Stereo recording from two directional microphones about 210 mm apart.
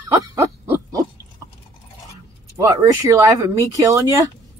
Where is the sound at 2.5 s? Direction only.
15° right (ahead or behind).